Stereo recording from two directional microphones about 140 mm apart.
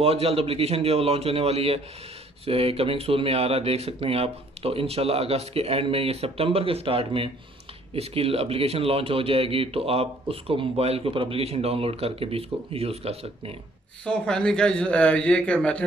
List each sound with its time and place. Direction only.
0.0 s speech: 45° right (ahead or behind)
14.0 s speech: 5° left (ahead or behind)